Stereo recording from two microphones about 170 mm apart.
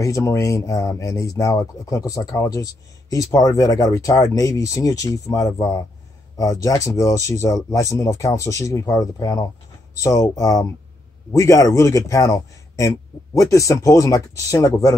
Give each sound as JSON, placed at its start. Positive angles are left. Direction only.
{"t": 0.0, "sound": "speech", "side_deg": 15}